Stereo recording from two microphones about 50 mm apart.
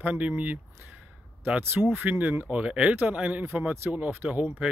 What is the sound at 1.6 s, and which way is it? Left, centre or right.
Speech, right.